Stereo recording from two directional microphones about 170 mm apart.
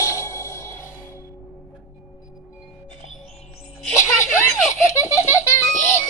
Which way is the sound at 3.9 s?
15° left (ahead or behind).